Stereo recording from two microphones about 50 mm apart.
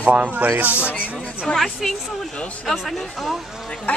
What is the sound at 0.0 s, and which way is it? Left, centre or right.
Speech, right.